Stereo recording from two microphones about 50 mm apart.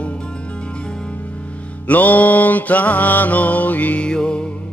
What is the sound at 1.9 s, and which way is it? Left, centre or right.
Mantra, left.